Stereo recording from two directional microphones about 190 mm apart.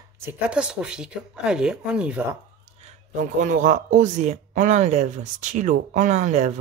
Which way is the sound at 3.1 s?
45° right (ahead or behind).